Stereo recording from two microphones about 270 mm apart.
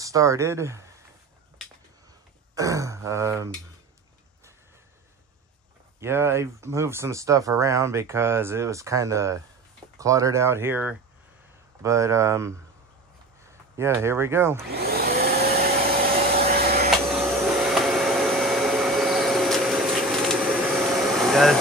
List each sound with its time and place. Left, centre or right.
0.0 s speech: centre
2.5 s speech: centre
5.9 s speech: centre
13.7 s speech: centre
14.8 s vacuum cleaner: right
17.7 s vacuum cleaner: centre